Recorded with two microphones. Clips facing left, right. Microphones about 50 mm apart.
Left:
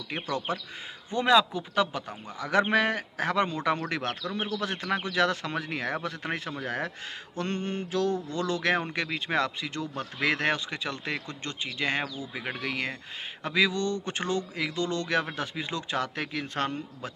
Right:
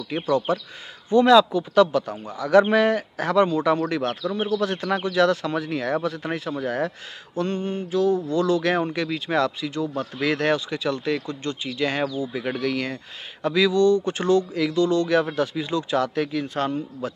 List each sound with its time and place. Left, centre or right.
0.1 s speech: left
1.1 s speech: left
2.3 s speech: left
7.3 s mantra: left
8.3 s speech: left
9.7 s mantra: left
10.1 s speech: left